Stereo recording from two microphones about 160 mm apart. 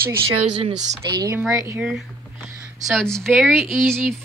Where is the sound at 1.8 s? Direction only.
Centre (ahead or behind).